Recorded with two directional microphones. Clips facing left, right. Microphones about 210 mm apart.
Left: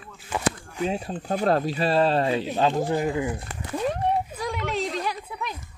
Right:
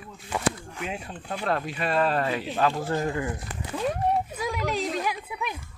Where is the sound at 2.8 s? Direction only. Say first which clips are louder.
Left 3 dB; 15° left (ahead or behind).